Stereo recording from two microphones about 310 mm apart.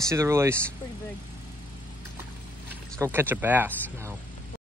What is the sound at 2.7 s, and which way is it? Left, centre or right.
Speech, centre.